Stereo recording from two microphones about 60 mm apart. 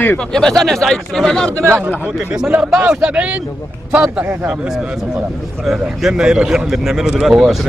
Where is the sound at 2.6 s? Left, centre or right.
Centre.